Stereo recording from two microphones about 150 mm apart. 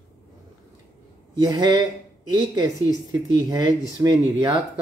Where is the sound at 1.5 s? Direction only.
30° right (ahead or behind).